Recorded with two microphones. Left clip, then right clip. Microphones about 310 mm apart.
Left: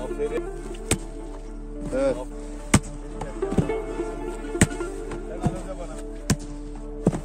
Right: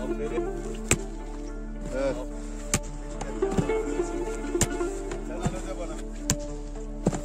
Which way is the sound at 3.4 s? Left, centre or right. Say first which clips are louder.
Right 1 dB; centre.